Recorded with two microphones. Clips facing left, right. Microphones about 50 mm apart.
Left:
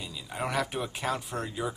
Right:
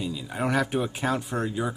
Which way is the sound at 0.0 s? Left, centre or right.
Centre.